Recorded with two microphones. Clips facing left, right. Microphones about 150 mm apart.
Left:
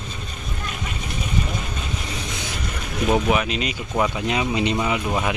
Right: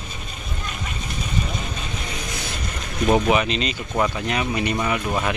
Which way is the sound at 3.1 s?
Centre (ahead or behind).